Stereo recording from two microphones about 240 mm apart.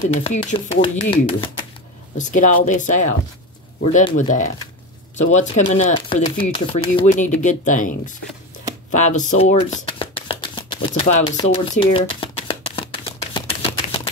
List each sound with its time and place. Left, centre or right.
0.2 s speech: left
8.9 s shuffling cards: left